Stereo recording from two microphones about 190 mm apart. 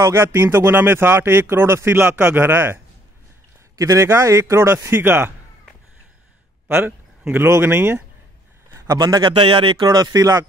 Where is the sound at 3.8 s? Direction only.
15° right (ahead or behind).